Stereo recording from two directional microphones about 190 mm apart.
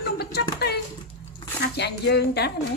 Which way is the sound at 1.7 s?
60° left (ahead or behind).